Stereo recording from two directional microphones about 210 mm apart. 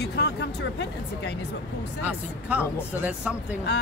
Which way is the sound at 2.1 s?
5° right (ahead or behind).